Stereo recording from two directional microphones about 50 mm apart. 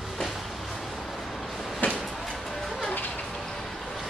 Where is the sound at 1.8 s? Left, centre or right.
Left.